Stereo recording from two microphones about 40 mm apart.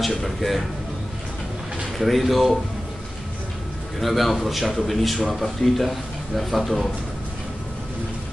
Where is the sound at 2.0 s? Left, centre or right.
Centre.